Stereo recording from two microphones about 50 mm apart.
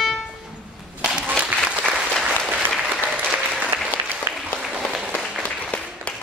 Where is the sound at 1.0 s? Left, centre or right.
Centre.